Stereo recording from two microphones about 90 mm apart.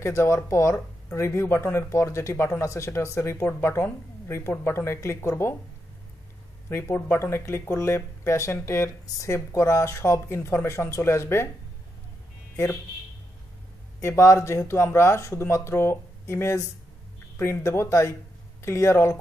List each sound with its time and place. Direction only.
0.0 s speech: 30° left (ahead or behind)
6.7 s speech: 25° left (ahead or behind)
14.0 s speech: 30° left (ahead or behind)